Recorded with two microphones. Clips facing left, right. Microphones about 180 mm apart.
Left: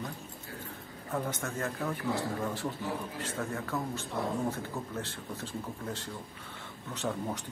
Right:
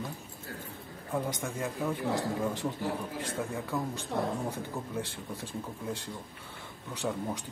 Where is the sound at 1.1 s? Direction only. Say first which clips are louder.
Right 1 dB; 10° right (ahead or behind).